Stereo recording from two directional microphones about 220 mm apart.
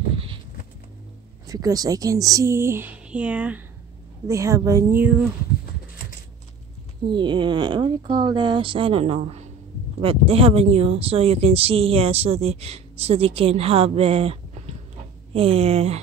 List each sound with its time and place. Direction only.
1.5 s a woman's voice: 15° right (ahead or behind)
7.1 s speech: 20° right (ahead or behind)